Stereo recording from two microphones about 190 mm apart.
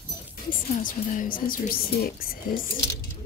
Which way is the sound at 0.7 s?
45° left (ahead or behind).